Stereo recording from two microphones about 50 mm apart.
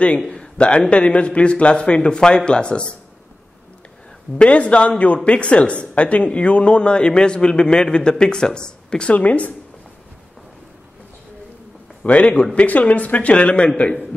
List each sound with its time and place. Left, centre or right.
0.3 s speech: centre
4.4 s speech: left
9.1 s speech: left
12.0 s speech: left